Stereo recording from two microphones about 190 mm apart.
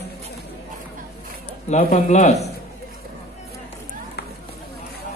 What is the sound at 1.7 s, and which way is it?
Speech, 35° left (ahead or behind).